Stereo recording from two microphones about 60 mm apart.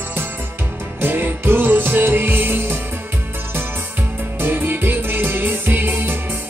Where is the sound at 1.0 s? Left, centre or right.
Right.